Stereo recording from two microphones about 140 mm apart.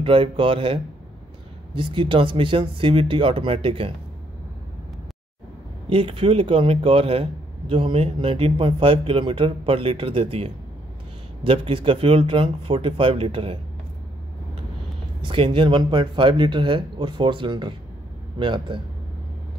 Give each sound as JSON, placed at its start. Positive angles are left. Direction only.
{"t": 0.0, "sound": "a man's voice", "side_deg": -40}
{"t": 1.8, "sound": "a man's voice", "side_deg": -35}
{"t": 5.9, "sound": "a man's voice", "side_deg": -40}
{"t": 15.2, "sound": "a man's voice", "side_deg": -40}